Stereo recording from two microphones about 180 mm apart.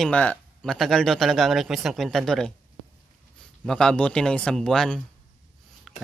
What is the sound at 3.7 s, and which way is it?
Speech, 5° left (ahead or behind).